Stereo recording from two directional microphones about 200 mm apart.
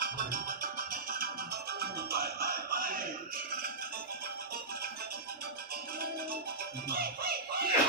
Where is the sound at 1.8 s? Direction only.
50° right (ahead or behind).